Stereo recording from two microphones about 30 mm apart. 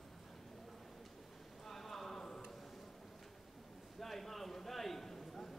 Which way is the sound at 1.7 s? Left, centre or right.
Centre.